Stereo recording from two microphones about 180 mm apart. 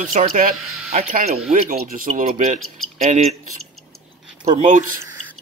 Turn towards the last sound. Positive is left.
turn(degrees=-40)  # may be behind; listen again after turning